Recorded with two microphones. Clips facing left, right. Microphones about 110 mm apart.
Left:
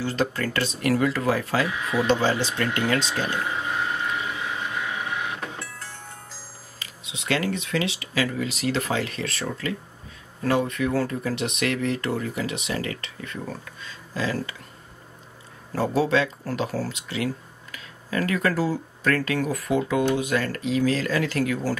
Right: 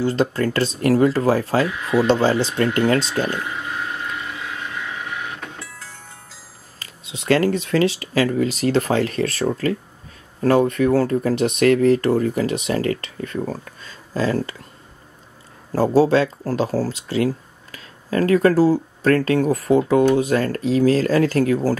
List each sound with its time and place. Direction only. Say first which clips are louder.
0.0 s speech: right 6 dB; 35° right (ahead or behind)
1.7 s speech: right 6 dB; centre (ahead or behind)
2.4 s speech: right 6 dB; 35° right (ahead or behind)
3.4 s vehicle: left 1 dB; 5° left (ahead or behind)
6.8 s speech: right 3 dB; 40° right (ahead or behind)
15.7 s speech: right 7 dB; 35° right (ahead or behind)